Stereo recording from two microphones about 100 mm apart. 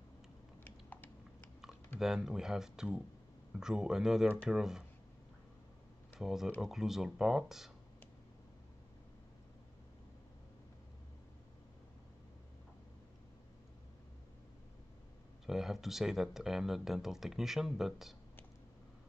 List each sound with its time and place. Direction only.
0.7 s typing: 20° left (ahead or behind)
2.0 s speech: 5° right (ahead or behind)
6.1 s speech: 5° right (ahead or behind)
15.4 s speech: 5° right (ahead or behind)